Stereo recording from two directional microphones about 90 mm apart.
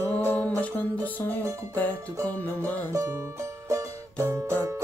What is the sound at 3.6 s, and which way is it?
Music, 35° right (ahead or behind).